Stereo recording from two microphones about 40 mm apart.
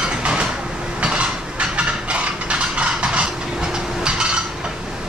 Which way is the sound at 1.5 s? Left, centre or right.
Right.